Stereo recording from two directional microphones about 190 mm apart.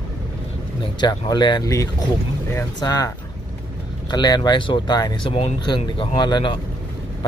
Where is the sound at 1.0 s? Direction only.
20° left (ahead or behind).